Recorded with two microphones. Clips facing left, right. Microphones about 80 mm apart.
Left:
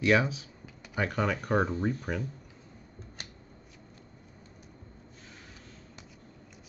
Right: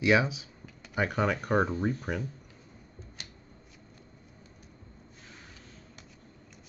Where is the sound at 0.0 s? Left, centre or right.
Centre.